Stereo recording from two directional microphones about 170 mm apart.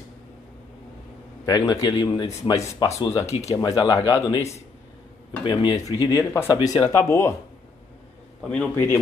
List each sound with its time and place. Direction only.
1.4 s speech: 20° left (ahead or behind)
5.4 s speech: 25° left (ahead or behind)
6.0 s speech: 15° left (ahead or behind)
8.4 s speech: 5° left (ahead or behind)